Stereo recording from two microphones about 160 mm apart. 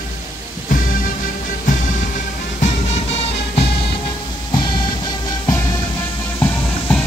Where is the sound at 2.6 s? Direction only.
45° left (ahead or behind).